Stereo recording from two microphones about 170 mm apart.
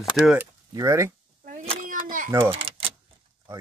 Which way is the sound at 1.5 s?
45° right (ahead or behind).